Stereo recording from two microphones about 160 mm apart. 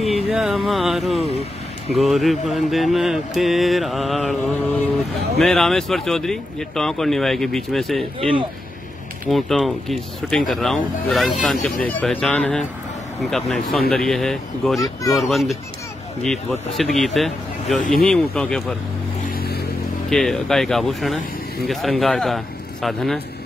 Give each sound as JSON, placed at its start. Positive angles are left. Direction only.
{"t": 0.0, "sound": "speech", "side_deg": 0}
{"t": 2.0, "sound": "mantra", "side_deg": 0}
{"t": 9.3, "sound": "mantra", "side_deg": 0}
{"t": 11.4, "sound": "speech", "side_deg": 5}
{"t": 12.1, "sound": "mantra", "side_deg": 5}
{"t": 19.3, "sound": "vehicle", "side_deg": 80}
{"t": 20.1, "sound": "mantra", "side_deg": 5}